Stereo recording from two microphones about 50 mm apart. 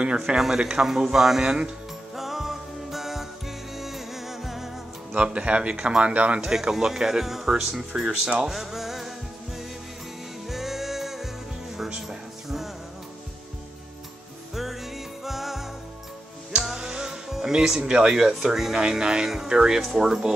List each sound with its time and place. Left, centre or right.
0.4 s speech: centre
2.1 s music: centre
5.1 s a man's voice: right
6.4 s speech: centre
10.5 s music: centre
14.5 s music: centre
16.6 s speech: centre